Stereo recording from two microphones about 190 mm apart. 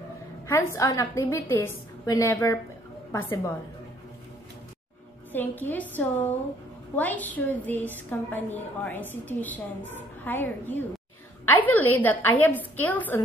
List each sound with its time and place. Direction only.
0.5 s a woman's voice: 15° left (ahead or behind)
5.3 s a woman's voice: 10° left (ahead or behind)